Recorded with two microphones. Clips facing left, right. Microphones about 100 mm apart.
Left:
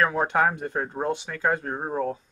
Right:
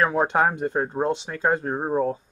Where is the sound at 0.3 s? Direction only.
20° right (ahead or behind).